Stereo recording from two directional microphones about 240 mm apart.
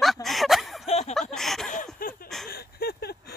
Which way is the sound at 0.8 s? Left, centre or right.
Left.